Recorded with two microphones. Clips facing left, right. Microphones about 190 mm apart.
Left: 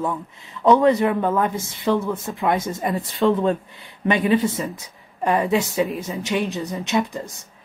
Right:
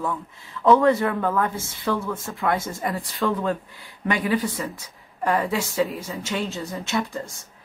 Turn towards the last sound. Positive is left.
turn(degrees=20)  # may be behind; listen again after turning